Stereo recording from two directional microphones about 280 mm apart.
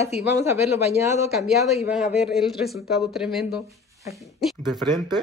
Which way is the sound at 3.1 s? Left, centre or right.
Centre.